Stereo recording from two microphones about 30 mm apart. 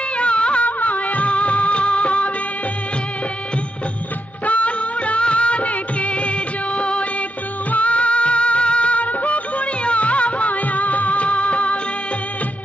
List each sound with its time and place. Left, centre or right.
0.2 s music: left
0.7 s music: left
1.3 s music of bollywood: left
4.5 s music of bollywood: left
7.7 s music: left